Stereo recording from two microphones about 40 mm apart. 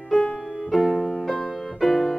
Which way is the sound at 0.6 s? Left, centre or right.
Centre.